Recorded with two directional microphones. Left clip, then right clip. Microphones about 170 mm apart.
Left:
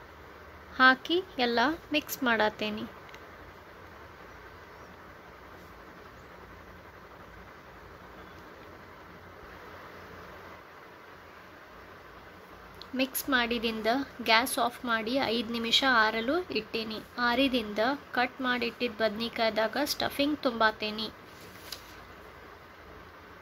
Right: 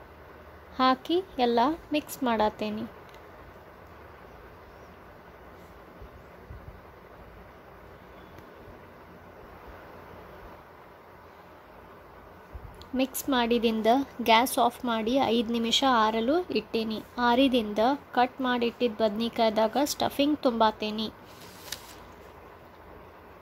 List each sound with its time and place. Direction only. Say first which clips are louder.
0.7 s speech: left 2 dB; 20° right (ahead or behind)
12.9 s a woman's voice: right 1 dB; 25° right (ahead or behind)